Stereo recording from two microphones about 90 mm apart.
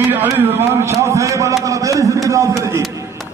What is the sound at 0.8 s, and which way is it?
A man's voice, 35° right (ahead or behind).